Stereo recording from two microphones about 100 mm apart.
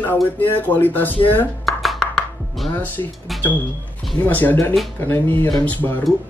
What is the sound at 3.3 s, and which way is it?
Speech, centre (ahead or behind).